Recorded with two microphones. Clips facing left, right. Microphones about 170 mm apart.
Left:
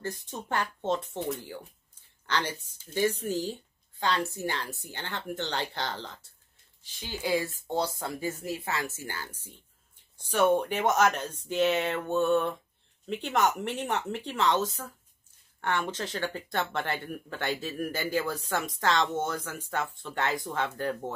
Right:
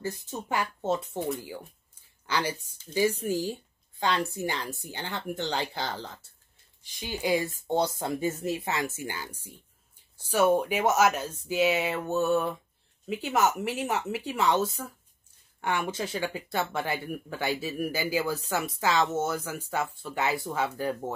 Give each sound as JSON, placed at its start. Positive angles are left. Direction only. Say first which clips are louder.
{"t": 0.0, "sound": "speech", "louder": "right 2 dB", "side_deg": -10}